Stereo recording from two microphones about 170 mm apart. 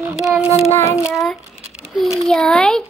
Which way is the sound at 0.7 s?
15° left (ahead or behind).